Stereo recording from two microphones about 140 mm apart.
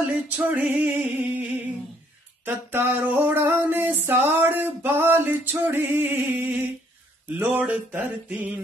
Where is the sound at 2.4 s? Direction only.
15° right (ahead or behind).